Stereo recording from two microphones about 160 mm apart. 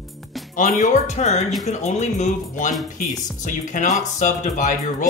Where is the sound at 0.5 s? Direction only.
55° left (ahead or behind).